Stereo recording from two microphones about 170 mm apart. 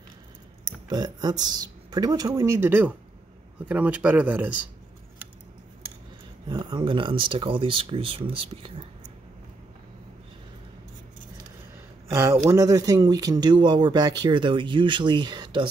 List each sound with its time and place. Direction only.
0.8 s speech: 25° right (ahead or behind)
6.5 s speech: 25° right (ahead or behind)
12.1 s speech: 15° right (ahead or behind)